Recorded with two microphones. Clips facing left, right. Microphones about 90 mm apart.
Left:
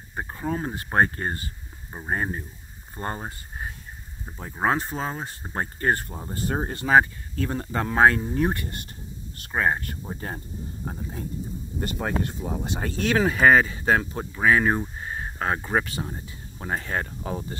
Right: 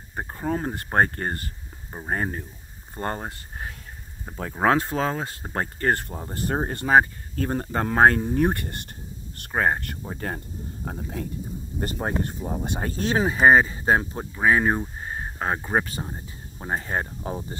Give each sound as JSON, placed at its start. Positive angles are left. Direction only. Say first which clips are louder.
{"t": 0.1, "sound": "speech", "louder": "right 1 dB", "side_deg": -35}
{"t": 3.3, "sound": "speech", "louder": "even", "side_deg": -65}
{"t": 5.5, "sound": "speech", "louder": "even", "side_deg": -50}
{"t": 9.8, "sound": "speech", "louder": "right 1 dB", "side_deg": -55}
{"t": 11.8, "sound": "speech", "louder": "even", "side_deg": -30}